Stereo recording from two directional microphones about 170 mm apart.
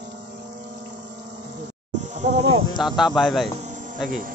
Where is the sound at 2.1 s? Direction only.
45° right (ahead or behind).